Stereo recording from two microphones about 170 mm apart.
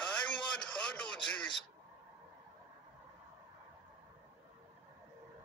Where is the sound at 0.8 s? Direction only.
5° left (ahead or behind).